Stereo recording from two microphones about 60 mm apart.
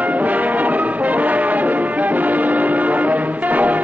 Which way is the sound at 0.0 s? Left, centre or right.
Right.